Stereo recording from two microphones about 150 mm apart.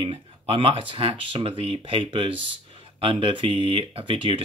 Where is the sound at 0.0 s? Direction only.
35° right (ahead or behind).